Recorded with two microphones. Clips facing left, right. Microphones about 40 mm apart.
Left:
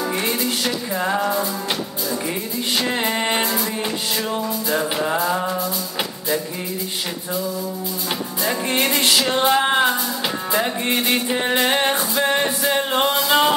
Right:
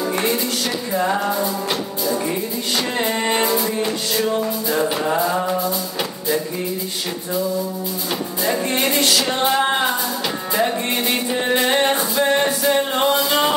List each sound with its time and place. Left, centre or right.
0.9 s music: centre
3.0 s music: centre
8.5 s music: centre
8.9 s music: left
9.3 s music: centre